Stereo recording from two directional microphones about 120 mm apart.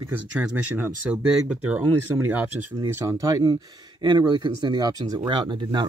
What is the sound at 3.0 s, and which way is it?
Speech, 30° right (ahead or behind).